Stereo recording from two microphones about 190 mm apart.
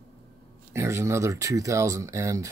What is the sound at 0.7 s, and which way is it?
Speech, 15° right (ahead or behind).